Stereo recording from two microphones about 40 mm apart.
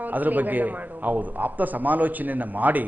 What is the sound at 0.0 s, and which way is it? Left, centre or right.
A man's voice, right.